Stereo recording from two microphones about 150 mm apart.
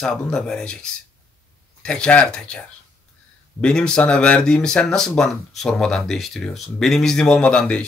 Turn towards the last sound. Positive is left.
turn(degrees=5)  # may be behind; listen again after turning